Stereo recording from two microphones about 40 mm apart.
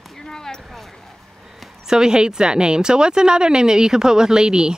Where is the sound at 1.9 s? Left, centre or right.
Centre.